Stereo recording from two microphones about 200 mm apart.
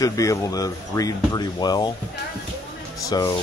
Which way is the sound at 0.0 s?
15° left (ahead or behind).